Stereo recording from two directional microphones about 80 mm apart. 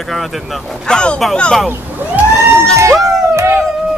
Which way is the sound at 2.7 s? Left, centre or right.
Right.